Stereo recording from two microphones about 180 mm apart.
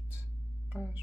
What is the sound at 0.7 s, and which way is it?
Hum, 5° right (ahead or behind).